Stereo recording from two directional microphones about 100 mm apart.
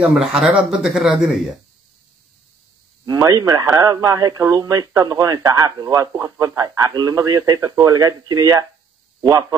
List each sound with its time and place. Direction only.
0.0 s speech: 5° right (ahead or behind)
3.1 s speech: 40° right (ahead or behind)